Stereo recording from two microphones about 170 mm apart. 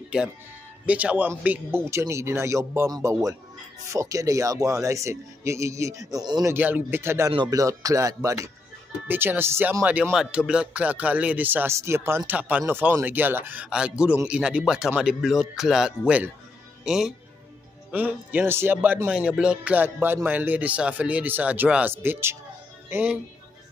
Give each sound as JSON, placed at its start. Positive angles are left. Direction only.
{"t": 0.8, "sound": "speech", "side_deg": -10}
{"t": 6.5, "sound": "speech", "side_deg": -10}